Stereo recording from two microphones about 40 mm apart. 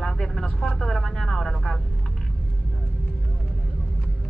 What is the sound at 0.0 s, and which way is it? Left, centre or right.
Vehicle, centre.